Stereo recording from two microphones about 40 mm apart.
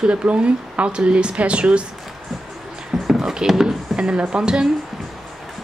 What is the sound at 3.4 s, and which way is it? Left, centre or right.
Speech, centre.